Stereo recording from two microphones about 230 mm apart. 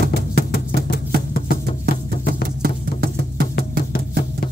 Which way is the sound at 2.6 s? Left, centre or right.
Right.